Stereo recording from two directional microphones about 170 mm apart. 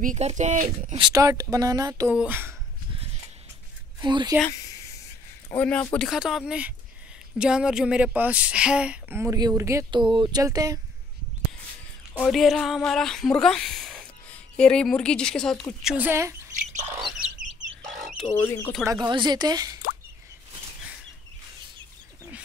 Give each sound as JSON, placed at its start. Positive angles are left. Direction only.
{"t": 0.0, "sound": "speech", "side_deg": -45}
{"t": 0.9, "sound": "speech", "side_deg": -25}
{"t": 4.0, "sound": "speech", "side_deg": -25}
{"t": 5.5, "sound": "speech", "side_deg": 10}
{"t": 12.1, "sound": "speech", "side_deg": 5}
{"t": 16.1, "sound": "speech", "side_deg": -15}
{"t": 17.0, "sound": "bird", "side_deg": 0}
{"t": 18.4, "sound": "speech", "side_deg": 15}
{"t": 18.9, "sound": "speech", "side_deg": -25}